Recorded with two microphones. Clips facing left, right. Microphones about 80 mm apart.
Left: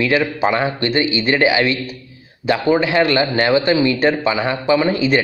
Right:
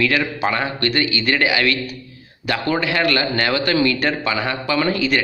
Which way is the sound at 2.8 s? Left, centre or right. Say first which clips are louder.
Left 4 dB; left.